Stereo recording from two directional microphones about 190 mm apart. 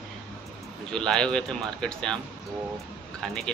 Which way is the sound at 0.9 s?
5° left (ahead or behind).